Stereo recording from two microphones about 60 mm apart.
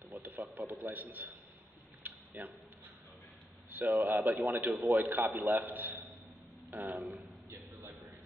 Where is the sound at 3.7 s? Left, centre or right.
Right.